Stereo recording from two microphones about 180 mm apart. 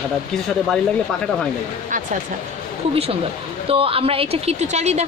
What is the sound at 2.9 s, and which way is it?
A woman's voice, 30° right (ahead or behind).